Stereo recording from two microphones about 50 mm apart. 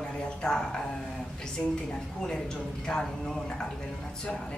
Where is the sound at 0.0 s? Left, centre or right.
Centre.